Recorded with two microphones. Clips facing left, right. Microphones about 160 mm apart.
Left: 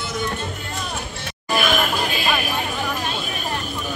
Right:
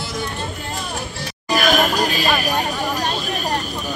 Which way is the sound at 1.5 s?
40° right (ahead or behind).